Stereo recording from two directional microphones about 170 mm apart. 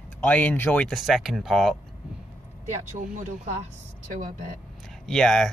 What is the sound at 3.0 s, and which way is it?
Speech, 45° right (ahead or behind).